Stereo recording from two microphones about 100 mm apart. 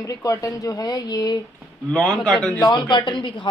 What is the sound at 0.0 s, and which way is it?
Speech, 35° left (ahead or behind).